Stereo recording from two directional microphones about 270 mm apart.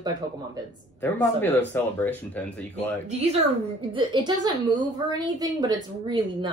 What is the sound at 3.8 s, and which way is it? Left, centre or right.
Speech, centre.